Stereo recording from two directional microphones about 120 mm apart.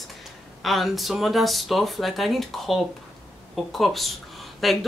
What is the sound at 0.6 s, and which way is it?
Speech, centre (ahead or behind).